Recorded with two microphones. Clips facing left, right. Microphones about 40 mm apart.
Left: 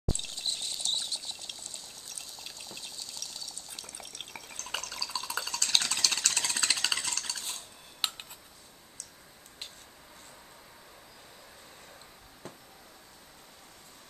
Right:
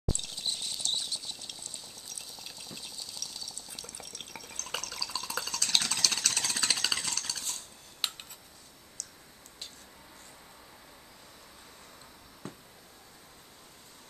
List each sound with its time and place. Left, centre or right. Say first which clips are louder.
0.1 s water: even; centre
9.0 s tick-tock: right 5 dB; left